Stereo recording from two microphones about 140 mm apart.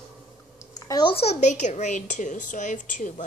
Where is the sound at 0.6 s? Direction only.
25° left (ahead or behind).